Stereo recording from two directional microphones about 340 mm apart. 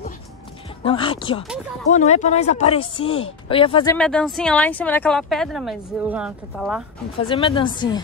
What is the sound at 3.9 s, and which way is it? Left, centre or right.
A woman's voice, centre.